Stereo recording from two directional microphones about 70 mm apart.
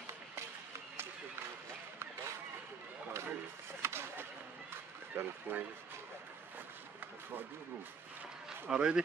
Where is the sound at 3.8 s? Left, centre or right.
Right.